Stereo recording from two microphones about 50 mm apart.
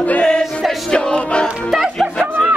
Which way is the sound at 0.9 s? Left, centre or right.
Centre.